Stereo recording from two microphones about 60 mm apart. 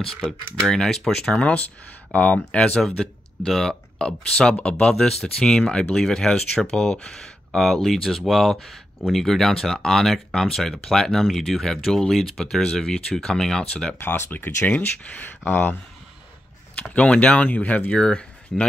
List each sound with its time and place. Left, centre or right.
0.0 s speech: centre
2.8 s speech: centre
13.9 s speech: left
16.9 s speech: centre